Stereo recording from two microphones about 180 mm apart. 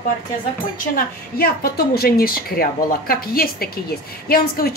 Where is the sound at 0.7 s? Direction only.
55° left (ahead or behind).